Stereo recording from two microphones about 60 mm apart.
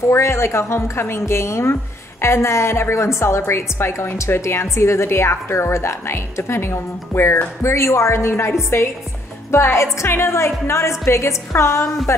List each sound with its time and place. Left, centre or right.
0.1 s a woman's voice: left